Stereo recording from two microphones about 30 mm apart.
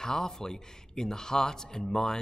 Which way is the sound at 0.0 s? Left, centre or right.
Centre.